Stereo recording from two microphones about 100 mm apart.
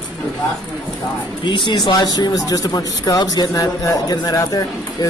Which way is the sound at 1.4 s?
50° left (ahead or behind).